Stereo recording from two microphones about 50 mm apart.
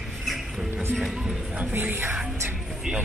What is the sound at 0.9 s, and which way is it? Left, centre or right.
Speech, centre.